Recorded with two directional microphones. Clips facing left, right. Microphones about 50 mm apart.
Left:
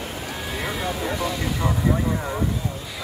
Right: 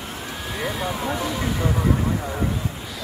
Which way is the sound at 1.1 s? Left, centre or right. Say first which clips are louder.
Even; centre.